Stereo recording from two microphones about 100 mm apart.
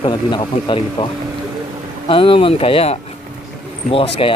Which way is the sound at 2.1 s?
65° left (ahead or behind).